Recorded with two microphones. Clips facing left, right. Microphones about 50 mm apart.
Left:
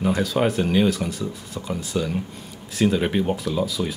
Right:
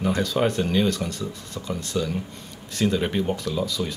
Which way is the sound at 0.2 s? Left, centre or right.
Centre.